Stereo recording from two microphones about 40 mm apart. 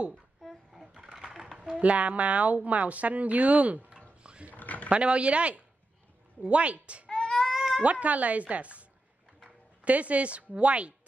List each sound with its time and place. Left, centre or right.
1.1 s a sound: centre
1.8 s speech: right
4.2 s dog: right
4.6 s a sound: left
4.8 s speech: right
7.1 s child singing: left
7.5 s cat: centre
7.8 s speech: right
9.8 s speech: right